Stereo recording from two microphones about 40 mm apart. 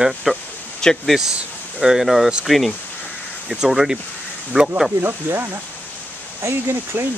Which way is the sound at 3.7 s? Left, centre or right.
Centre.